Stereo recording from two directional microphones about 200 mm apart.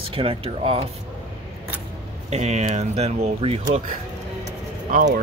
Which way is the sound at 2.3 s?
35° right (ahead or behind).